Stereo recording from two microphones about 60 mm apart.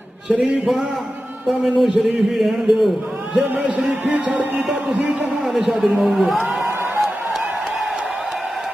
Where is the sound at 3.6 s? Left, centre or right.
Centre.